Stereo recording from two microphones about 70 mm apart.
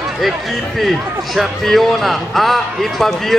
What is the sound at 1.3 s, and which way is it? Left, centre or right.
A man's voice, centre.